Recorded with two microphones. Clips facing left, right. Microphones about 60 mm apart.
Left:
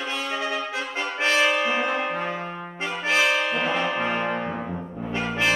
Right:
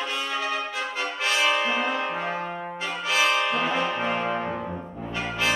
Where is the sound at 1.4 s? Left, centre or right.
Left.